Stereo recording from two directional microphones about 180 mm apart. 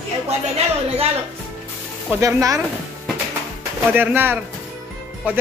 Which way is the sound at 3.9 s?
10° right (ahead or behind).